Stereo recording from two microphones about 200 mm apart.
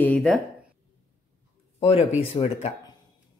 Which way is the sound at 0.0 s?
5° left (ahead or behind).